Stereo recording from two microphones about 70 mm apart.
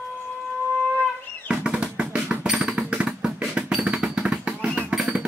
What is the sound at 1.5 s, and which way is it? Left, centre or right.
Drum, centre.